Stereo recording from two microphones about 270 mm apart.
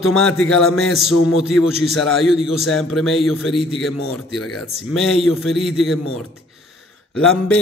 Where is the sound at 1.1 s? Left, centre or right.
Left.